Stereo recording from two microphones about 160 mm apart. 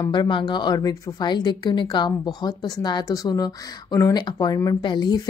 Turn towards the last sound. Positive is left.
turn(degrees=30)  # may be behind; listen again after turning